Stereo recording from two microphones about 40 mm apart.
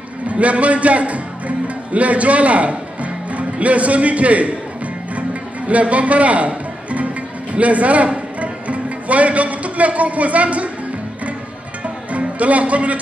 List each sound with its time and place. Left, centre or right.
0.3 s a man's voice: right
5.1 s music: right
7.5 s a man's voice: right
12.1 s speech: right